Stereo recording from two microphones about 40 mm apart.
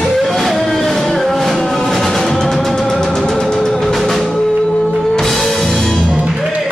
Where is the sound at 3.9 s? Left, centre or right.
Centre.